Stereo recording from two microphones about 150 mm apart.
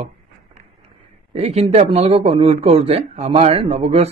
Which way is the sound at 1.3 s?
45° right (ahead or behind).